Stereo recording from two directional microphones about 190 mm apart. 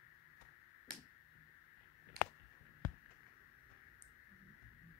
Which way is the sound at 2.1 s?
50° right (ahead or behind).